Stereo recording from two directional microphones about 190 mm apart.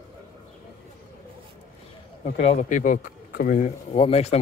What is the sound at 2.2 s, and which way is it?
Speech, 35° left (ahead or behind).